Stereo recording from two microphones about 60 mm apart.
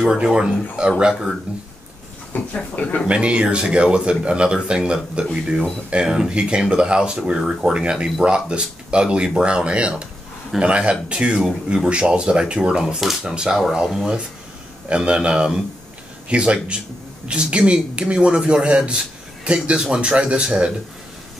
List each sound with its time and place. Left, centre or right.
0.0 s speech: centre
2.3 s speech: left
3.1 s speech: centre